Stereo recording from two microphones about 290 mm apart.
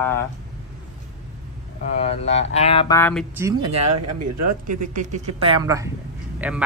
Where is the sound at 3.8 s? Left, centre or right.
Right.